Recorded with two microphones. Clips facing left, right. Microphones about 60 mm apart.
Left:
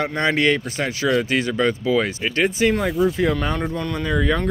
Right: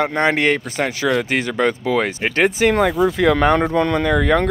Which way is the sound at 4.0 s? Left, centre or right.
Right.